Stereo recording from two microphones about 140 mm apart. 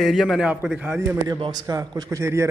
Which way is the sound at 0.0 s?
Centre (ahead or behind).